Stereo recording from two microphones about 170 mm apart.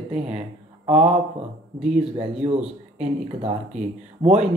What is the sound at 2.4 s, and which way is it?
Speech, 40° right (ahead or behind).